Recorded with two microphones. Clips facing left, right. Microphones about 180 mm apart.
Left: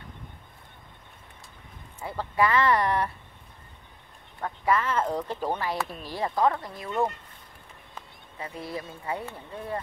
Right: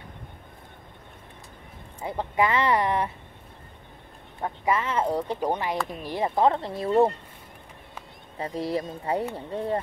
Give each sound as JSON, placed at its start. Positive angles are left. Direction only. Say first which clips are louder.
{"t": 2.0, "sound": "speech", "louder": "right 1 dB", "side_deg": -20}
{"t": 4.4, "sound": "speech", "louder": "even", "side_deg": -20}
{"t": 8.4, "sound": "speech", "louder": "right 7 dB", "side_deg": -35}